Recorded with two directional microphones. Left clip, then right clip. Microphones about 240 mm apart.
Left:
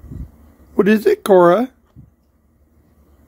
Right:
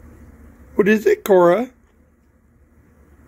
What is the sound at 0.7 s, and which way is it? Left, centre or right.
Speech, left.